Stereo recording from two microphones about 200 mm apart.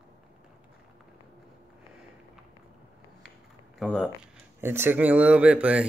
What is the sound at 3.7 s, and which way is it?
Speech, centre (ahead or behind).